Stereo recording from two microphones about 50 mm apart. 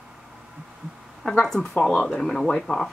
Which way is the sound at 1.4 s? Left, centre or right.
Centre.